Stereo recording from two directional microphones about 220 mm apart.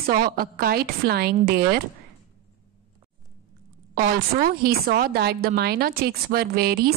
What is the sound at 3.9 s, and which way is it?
A woman's voice, 45° right (ahead or behind).